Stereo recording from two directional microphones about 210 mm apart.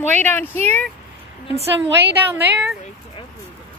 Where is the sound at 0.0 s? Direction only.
10° left (ahead or behind).